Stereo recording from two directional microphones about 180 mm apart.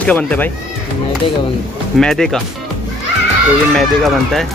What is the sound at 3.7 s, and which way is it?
Speech, centre (ahead or behind).